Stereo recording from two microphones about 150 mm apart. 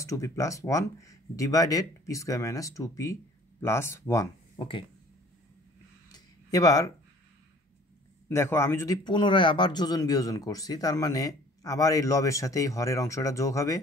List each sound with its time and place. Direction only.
0.0 s speech: 20° left (ahead or behind)
6.1 s a sound: 25° left (ahead or behind)
8.3 s speech: 15° left (ahead or behind)